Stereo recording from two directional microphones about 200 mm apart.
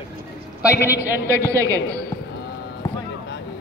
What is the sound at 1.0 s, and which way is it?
Speech, 10° right (ahead or behind).